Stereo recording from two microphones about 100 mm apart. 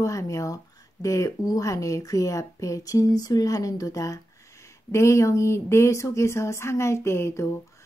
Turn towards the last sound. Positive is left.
turn(degrees=25)  # may be behind; listen again after turning